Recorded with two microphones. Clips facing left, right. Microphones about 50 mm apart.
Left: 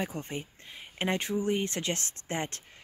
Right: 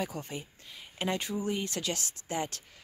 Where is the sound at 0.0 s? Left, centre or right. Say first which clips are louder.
Left 1 dB; left.